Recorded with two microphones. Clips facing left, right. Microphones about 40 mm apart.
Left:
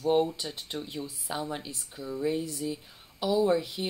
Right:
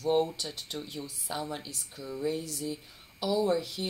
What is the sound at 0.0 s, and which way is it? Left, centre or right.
Speech, centre.